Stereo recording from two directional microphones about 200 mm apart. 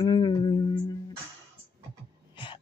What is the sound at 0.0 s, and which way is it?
Music, 20° left (ahead or behind).